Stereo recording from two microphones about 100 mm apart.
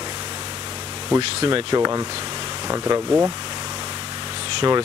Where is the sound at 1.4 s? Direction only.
65° right (ahead or behind).